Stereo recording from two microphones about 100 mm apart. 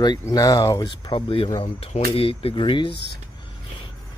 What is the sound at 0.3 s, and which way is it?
Speech, 35° left (ahead or behind).